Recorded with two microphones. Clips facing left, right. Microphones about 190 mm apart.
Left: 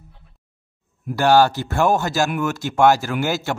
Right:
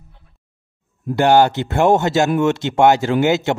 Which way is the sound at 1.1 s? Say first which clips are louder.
Right 2 dB; 20° right (ahead or behind).